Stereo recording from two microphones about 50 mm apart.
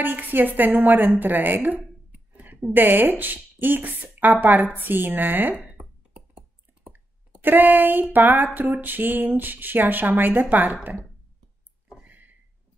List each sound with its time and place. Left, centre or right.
0.0 s speech: right
6.1 s a sound: right
7.4 s speech: right